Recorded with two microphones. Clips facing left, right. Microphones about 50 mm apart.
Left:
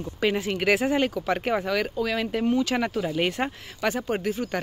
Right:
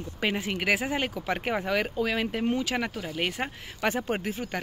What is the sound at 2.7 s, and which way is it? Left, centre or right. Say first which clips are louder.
Speech: left 5 dB; centre.